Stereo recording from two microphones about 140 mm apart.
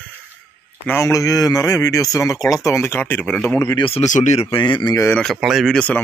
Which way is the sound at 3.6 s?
25° left (ahead or behind).